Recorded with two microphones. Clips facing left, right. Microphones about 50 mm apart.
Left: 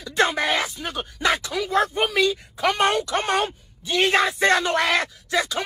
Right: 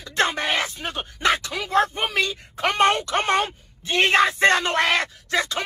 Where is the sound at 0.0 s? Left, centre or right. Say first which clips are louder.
Left 2 dB; right.